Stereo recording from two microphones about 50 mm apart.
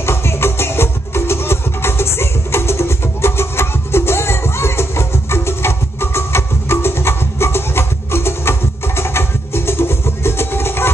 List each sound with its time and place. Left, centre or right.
0.0 s music: left